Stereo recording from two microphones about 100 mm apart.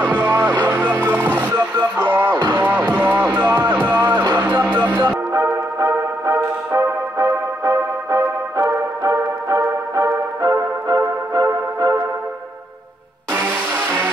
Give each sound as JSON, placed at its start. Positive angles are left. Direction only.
{"t": 0.0, "sound": "music", "side_deg": 10}
{"t": 1.0, "sound": "music", "side_deg": -20}
{"t": 2.3, "sound": "music", "side_deg": -45}
{"t": 2.6, "sound": "music", "side_deg": -20}
{"t": 5.3, "sound": "music", "side_deg": -30}
{"t": 13.3, "sound": "music", "side_deg": -20}